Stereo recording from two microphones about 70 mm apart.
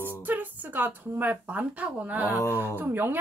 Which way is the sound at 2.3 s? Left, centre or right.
Left.